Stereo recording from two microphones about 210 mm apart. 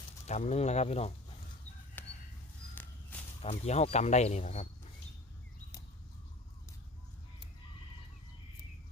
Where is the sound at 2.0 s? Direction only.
10° left (ahead or behind).